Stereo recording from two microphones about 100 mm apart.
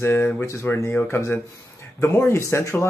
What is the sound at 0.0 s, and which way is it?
Speech, 25° left (ahead or behind).